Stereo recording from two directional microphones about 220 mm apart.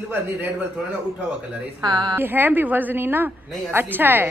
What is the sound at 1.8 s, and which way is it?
Speech, 20° right (ahead or behind).